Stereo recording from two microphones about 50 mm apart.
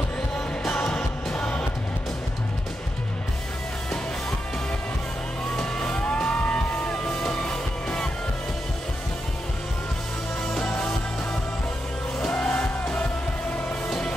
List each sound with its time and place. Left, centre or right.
0.7 s music: centre
5.6 s music: centre
10.5 s music: centre
12.4 s music: centre
13.8 s music: centre